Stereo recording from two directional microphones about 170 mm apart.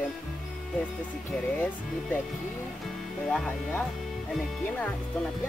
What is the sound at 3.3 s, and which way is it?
Speech, 5° left (ahead or behind).